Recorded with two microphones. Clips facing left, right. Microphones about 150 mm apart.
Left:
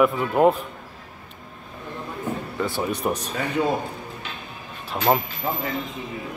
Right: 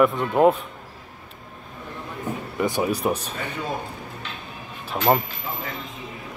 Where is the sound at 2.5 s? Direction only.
15° right (ahead or behind).